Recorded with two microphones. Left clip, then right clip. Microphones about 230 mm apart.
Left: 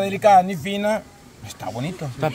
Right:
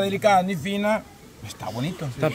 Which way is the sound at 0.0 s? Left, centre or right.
Centre.